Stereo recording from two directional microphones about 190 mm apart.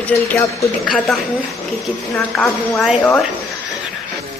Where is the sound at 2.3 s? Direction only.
Centre (ahead or behind).